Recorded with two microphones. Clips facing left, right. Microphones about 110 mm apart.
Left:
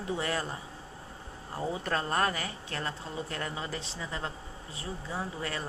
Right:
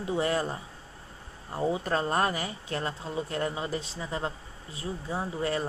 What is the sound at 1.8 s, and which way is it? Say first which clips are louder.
A woman's voice: left 1 dB; 20° right (ahead or behind).